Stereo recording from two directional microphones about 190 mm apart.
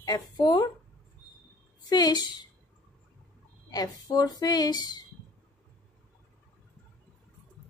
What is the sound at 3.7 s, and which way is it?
Speech, 20° left (ahead or behind).